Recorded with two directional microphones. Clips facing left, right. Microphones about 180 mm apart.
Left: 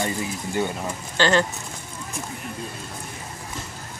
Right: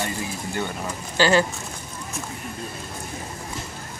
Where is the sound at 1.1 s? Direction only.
10° right (ahead or behind).